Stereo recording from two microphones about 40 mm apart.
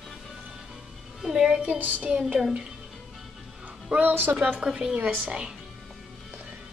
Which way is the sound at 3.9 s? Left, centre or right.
Right.